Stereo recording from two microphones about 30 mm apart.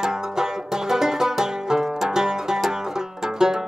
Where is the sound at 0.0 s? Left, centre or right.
Centre.